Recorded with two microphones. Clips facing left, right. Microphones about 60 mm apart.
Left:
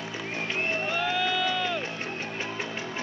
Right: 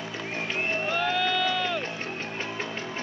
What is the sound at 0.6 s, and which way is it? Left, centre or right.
Crowd, centre.